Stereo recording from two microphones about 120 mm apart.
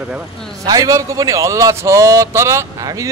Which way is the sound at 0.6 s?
30° right (ahead or behind).